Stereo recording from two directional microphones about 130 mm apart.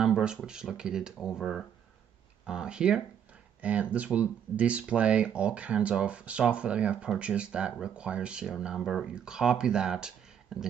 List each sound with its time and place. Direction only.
0.0 s speech: 5° right (ahead or behind)